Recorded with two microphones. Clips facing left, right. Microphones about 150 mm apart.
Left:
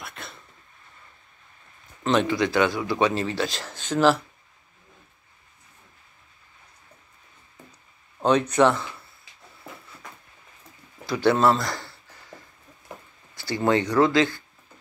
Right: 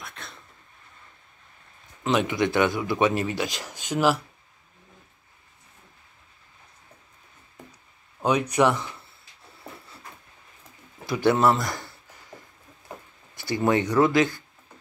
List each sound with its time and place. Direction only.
0.0 s throat clearing: centre (ahead or behind)
2.0 s speech: 10° right (ahead or behind)
8.2 s speech: 10° right (ahead or behind)
11.1 s speech: 20° right (ahead or behind)
13.3 s a sound: 20° right (ahead or behind)
13.8 s speech: 20° right (ahead or behind)